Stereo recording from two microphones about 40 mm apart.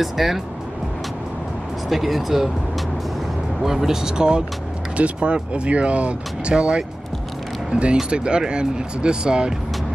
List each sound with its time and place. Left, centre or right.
0.0 s speech: centre
1.9 s speech: centre
3.6 s speech: centre
4.9 s speech: right